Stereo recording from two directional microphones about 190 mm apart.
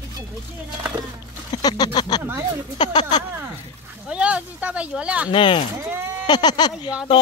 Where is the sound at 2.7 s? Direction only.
20° left (ahead or behind).